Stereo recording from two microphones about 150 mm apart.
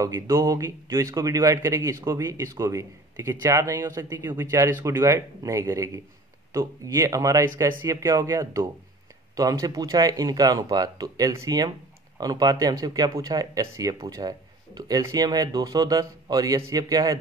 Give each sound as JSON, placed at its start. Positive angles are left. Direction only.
{"t": 0.0, "sound": "a man's voice", "side_deg": -20}